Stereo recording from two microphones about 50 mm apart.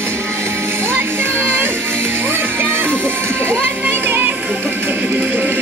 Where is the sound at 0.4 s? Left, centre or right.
Right.